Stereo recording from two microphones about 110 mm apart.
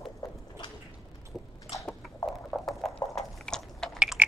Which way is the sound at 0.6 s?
45° left (ahead or behind).